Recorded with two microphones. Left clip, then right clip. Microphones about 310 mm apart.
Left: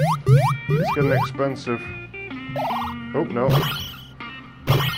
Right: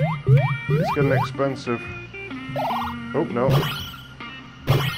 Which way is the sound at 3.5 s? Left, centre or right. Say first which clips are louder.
Left 1 dB; centre.